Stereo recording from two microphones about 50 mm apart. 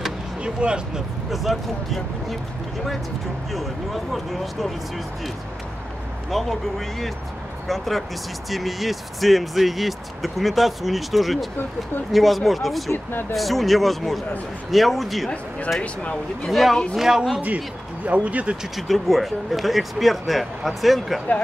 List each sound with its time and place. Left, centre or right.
0.4 s speech: centre
1.3 s speech: centre
3.5 s speech: centre
6.3 s speech: centre
7.6 s speech: centre
15.8 s speech: left
16.4 s speech: centre
18.0 s speech: right
18.8 s speech: centre